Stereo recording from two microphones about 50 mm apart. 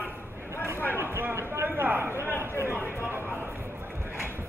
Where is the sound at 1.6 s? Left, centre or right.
Right.